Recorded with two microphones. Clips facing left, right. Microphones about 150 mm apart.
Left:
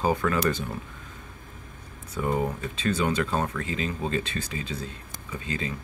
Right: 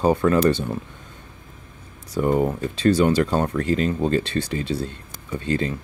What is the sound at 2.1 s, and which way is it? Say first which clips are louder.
Speech: right 7 dB; 35° right (ahead or behind).